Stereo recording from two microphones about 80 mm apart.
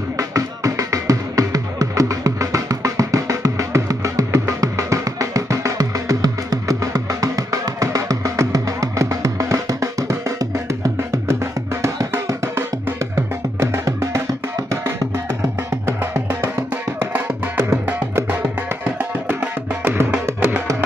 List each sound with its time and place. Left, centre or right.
0.2 s music: right
16.0 s music: right
18.9 s music: right